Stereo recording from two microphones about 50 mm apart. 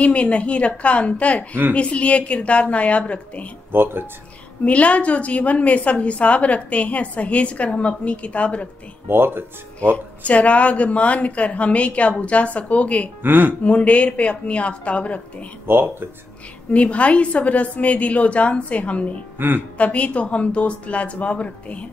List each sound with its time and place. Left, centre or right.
0.0 s a woman's voice: left
3.7 s speech: right
4.6 s a woman's voice: left
9.1 s speech: right
9.9 s a woman's voice: left
13.2 s speech: right
13.7 s a woman's voice: left
15.6 s speech: right
16.7 s a woman's voice: left
19.3 s a woman's voice: right
19.8 s a woman's voice: left